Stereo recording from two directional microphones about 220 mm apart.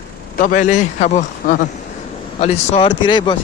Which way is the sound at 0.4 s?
35° left (ahead or behind).